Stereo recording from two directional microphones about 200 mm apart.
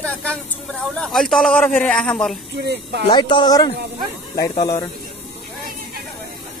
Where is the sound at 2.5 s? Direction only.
55° right (ahead or behind).